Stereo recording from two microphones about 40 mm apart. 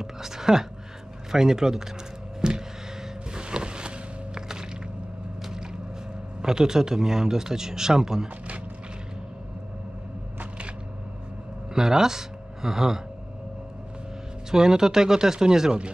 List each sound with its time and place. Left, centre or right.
0.0 s a sound: centre
1.3 s speech: centre
2.4 s a sound: centre
6.4 s speech: centre
11.7 s speech: centre
14.5 s speech: centre